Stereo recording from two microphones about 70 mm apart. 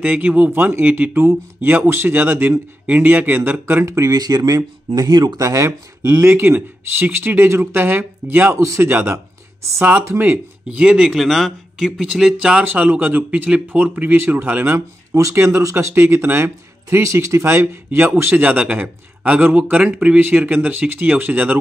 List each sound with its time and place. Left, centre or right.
0.0 s speech: centre
0.5 s speech: right
3.8 s speech: right
5.4 s speech: right
5.7 s speech: right
8.5 s speech: right
10.7 s speech: centre; by 14.8 s right
15.1 s speech: right